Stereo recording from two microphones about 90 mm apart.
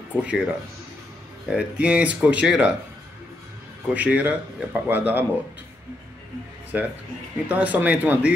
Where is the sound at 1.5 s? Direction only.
15° right (ahead or behind).